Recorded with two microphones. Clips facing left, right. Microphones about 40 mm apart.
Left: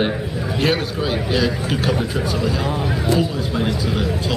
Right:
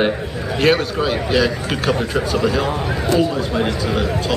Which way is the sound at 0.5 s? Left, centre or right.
Right.